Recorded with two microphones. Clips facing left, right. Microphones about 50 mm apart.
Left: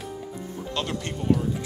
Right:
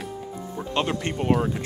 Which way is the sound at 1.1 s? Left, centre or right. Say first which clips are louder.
Right 1 dB; right.